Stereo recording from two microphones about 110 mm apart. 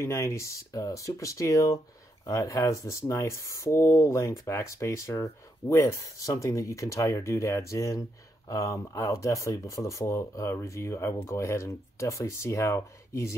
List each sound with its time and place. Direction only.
0.0 s speech: 25° left (ahead or behind)